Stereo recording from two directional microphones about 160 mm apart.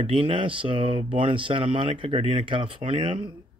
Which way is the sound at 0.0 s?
35° right (ahead or behind).